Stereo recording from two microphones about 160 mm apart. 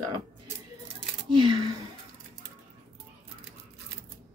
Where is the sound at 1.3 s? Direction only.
30° right (ahead or behind).